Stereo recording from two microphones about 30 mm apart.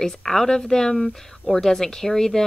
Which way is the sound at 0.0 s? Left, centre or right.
Centre.